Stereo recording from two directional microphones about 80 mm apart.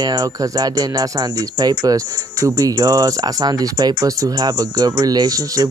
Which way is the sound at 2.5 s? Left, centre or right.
Right.